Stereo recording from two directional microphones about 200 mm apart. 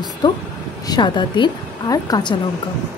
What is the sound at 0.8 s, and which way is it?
A woman's voice, 20° left (ahead or behind).